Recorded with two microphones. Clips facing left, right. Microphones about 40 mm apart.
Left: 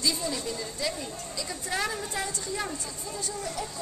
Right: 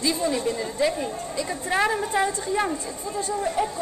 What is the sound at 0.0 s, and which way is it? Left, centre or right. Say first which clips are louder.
A woman's voice: right 6 dB; right.